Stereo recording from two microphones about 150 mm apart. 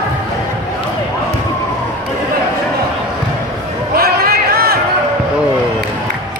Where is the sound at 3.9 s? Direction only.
90° right.